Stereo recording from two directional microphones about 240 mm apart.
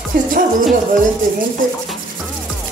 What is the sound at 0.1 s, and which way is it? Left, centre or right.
Speech, right.